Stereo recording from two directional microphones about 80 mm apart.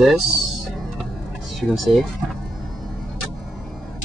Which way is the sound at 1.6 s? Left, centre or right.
Centre.